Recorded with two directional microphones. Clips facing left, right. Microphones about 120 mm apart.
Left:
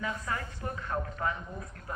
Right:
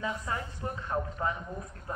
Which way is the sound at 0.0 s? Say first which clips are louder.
Right 1 dB; 20° right (ahead or behind).